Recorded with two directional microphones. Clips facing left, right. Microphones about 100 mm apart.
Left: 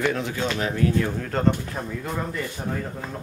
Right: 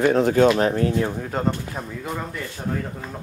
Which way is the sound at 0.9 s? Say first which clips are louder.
Right 1 dB; 25° right (ahead or behind).